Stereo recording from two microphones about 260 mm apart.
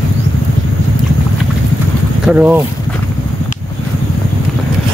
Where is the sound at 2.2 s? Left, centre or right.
Centre.